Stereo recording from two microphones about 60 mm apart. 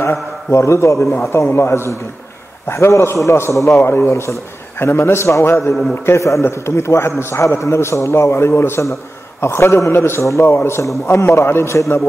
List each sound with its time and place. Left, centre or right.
0.0 s a man's voice: left
6.0 s a man's voice: left